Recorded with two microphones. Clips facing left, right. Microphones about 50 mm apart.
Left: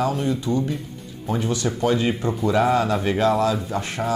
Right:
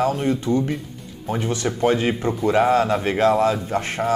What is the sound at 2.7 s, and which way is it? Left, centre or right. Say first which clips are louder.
Speech: right 2 dB; right.